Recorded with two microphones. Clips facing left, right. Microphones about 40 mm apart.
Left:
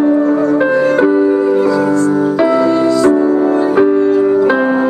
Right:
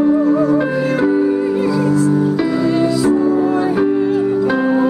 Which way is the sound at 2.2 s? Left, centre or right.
Centre.